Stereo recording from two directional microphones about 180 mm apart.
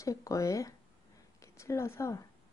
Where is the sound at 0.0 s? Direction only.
20° left (ahead or behind).